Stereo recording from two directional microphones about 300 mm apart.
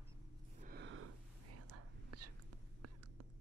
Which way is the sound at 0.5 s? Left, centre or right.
Right.